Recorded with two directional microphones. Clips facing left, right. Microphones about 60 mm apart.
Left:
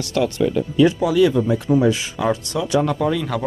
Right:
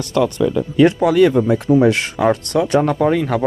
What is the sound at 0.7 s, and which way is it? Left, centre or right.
Speech, right.